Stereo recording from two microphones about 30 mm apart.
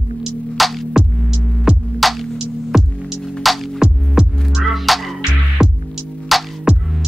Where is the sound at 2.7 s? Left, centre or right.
Centre.